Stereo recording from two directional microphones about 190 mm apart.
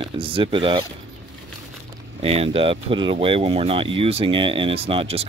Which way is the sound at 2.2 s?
30° right (ahead or behind).